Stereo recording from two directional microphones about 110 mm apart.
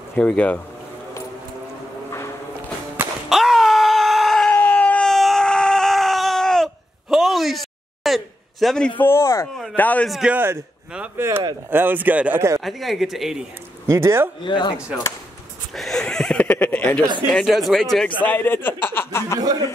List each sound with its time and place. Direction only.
0.1 s speech: 10° left (ahead or behind)
3.3 s wail: centre (ahead or behind)
4.5 s a sound: 15° left (ahead or behind)
9.0 s a man's voice: 25° left (ahead or behind)
9.8 s speech: 15° left (ahead or behind)
10.0 s speech: centre (ahead or behind)
10.3 s speech: 20° right (ahead or behind)
12.6 s speech: centre (ahead or behind)
13.8 s speech: 25° right (ahead or behind)
14.4 s speech: 45° left (ahead or behind)
15.7 s a sound: 5° left (ahead or behind)
17.3 s speech: centre (ahead or behind)
18.2 s a man's voice: 20° left (ahead or behind)
19.4 s speech: 35° right (ahead or behind)